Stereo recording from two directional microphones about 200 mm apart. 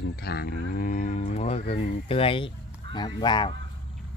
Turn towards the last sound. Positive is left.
turn(degrees=25)  # may be behind; listen again after turning